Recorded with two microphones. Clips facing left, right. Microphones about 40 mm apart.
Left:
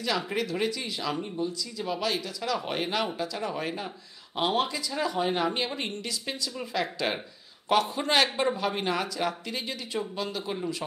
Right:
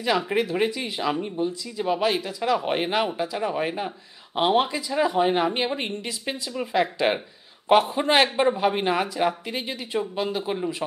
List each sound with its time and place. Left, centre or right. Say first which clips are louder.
0.0 s speech: right 6 dB; right